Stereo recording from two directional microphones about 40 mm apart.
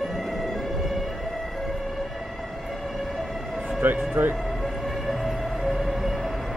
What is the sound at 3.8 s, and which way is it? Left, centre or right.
Speech, right.